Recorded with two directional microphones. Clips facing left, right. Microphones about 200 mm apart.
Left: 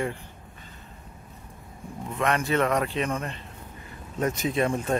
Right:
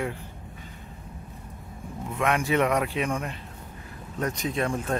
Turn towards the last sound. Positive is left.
turn(degrees=0)  # may be behind; listen again after turning